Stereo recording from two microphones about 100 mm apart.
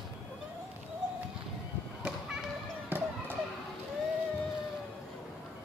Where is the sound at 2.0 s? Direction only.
5° right (ahead or behind).